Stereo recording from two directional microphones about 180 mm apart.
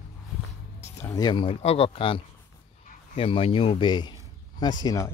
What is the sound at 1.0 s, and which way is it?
Speech, 20° left (ahead or behind).